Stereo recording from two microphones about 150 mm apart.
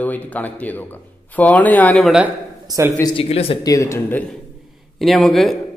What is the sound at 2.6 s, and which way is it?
Speech, 20° right (ahead or behind).